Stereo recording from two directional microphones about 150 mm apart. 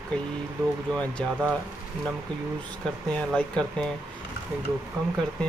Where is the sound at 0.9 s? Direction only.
5° left (ahead or behind).